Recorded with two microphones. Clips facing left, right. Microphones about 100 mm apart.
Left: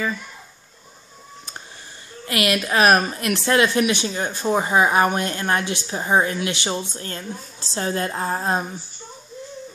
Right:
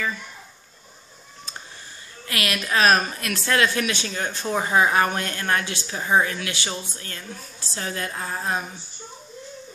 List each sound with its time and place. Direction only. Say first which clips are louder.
2.2 s speech: left 6 dB; 25° left (ahead or behind)